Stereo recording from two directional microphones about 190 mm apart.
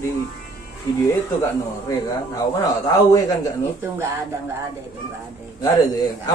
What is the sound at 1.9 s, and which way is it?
A man's voice, 15° left (ahead or behind).